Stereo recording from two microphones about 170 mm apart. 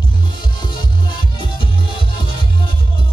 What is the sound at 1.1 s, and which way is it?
Music, 30° left (ahead or behind).